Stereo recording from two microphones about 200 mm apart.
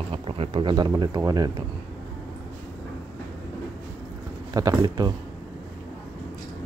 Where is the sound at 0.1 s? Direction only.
25° right (ahead or behind).